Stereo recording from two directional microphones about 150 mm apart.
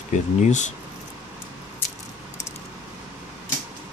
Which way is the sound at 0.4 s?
55° left (ahead or behind).